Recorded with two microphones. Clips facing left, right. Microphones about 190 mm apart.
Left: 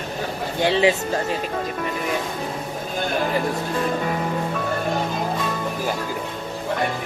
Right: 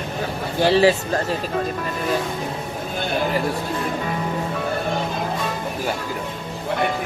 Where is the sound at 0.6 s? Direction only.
20° left (ahead or behind).